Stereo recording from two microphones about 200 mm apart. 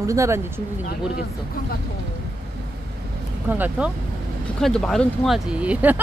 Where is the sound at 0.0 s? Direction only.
15° right (ahead or behind).